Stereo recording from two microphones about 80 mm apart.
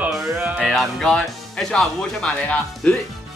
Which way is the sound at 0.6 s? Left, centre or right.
Centre.